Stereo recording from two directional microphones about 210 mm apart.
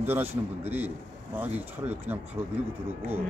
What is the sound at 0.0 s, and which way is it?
Speech, 10° right (ahead or behind).